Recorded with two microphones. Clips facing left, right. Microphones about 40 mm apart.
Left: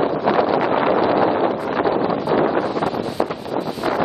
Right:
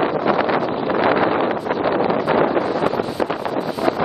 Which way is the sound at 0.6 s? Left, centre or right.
Left.